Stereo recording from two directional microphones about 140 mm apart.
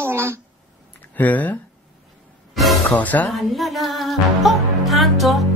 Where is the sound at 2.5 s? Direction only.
Centre (ahead or behind).